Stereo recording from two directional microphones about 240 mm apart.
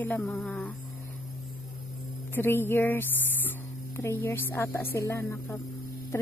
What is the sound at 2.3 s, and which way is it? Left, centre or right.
A woman's voice, centre.